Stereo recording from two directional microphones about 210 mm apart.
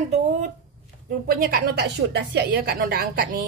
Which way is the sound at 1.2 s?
45° right (ahead or behind).